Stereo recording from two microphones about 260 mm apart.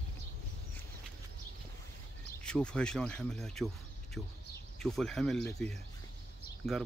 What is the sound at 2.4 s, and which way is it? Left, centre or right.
Speech, centre.